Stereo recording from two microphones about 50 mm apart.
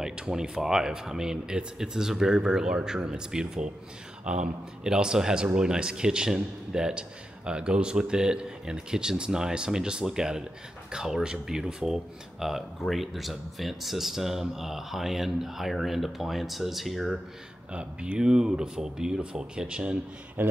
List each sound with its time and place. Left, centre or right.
0.0 s a man's voice: centre
17.7 s a man's voice: right
20.4 s speech: right